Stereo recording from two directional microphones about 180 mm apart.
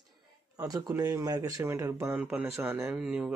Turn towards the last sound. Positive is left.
turn(degrees=-5)  # may be behind; listen again after turning